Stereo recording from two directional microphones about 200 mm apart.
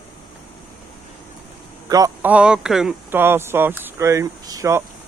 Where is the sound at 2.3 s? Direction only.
5° right (ahead or behind).